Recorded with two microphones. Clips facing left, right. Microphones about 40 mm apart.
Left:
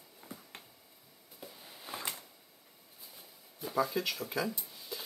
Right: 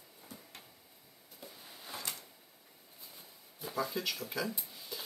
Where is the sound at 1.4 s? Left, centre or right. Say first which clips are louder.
Left 2 dB; centre.